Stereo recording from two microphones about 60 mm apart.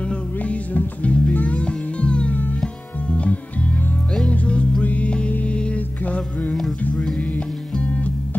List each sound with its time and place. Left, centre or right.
0.1 s music: left